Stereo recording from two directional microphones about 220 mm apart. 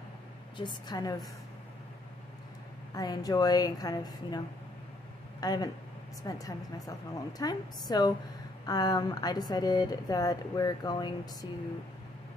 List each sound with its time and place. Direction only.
0.6 s a woman's voice: 20° left (ahead or behind)
2.9 s speech: 15° left (ahead or behind)
5.4 s speech: 20° left (ahead or behind)